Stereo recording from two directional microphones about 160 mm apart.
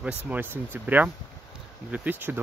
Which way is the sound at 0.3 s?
10° right (ahead or behind).